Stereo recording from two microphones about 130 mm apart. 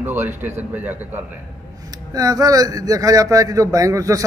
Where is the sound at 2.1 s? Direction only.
25° right (ahead or behind).